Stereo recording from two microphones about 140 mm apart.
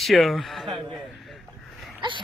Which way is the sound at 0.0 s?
Centre (ahead or behind).